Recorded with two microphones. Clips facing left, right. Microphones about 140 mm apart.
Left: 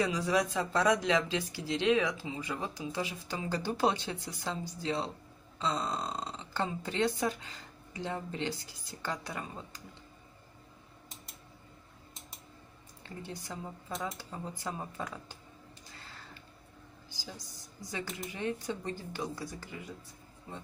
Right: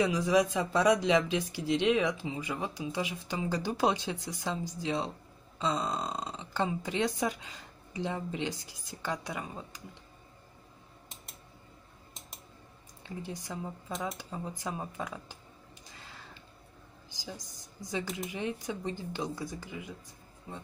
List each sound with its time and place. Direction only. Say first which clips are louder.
0.3 s speech: right 3 dB; 15° right (ahead or behind)
5.6 s burping: right 2 dB; 20° right (ahead or behind)
6.3 s speech: right 5 dB; 15° right (ahead or behind)
13.3 s speech: right 2 dB; 15° right (ahead or behind)
17.1 s a woman's voice: right 3 dB; 20° right (ahead or behind)